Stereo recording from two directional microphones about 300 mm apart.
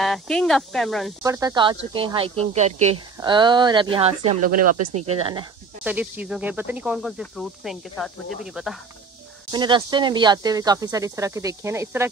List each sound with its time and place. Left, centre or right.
0.0 s speech: centre
1.2 s a woman's voice: centre
4.4 s speech: right
5.0 s speech: centre
9.5 s speech: centre